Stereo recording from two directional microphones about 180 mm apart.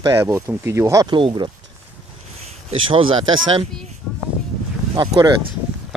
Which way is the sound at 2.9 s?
30° right (ahead or behind).